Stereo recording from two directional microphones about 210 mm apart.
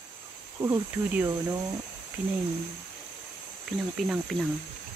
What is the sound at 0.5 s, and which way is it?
Speech, 10° right (ahead or behind).